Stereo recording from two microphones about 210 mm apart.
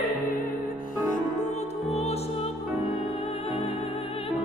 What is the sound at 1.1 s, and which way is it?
Music, 30° left (ahead or behind).